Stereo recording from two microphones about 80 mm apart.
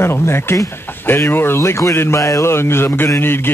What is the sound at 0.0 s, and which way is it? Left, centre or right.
Speech, left.